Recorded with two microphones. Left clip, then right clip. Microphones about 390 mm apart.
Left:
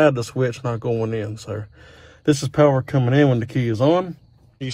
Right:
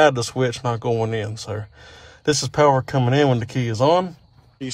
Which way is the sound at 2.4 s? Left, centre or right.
Right.